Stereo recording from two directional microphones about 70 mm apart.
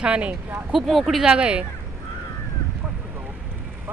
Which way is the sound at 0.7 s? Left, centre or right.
Centre.